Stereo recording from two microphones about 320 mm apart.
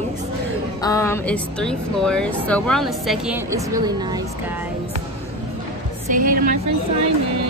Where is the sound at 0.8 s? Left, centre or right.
Centre.